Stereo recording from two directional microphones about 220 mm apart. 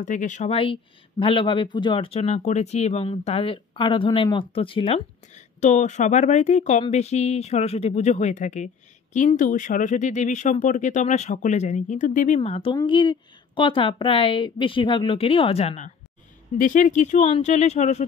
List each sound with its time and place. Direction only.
0.0 s speech: 35° left (ahead or behind)